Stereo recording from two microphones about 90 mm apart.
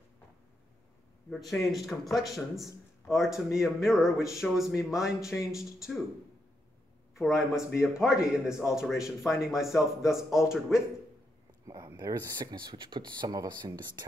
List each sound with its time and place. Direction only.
1.5 s a man's voice: centre (ahead or behind)
7.2 s a man's voice: 5° right (ahead or behind)
11.7 s speech: 50° right (ahead or behind)